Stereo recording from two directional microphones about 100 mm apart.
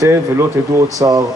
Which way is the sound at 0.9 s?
35° right (ahead or behind).